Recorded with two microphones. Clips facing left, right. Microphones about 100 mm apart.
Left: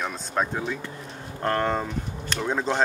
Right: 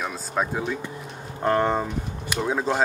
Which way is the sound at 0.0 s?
5° right (ahead or behind).